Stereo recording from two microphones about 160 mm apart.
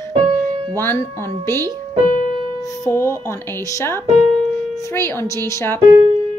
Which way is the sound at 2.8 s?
20° left (ahead or behind).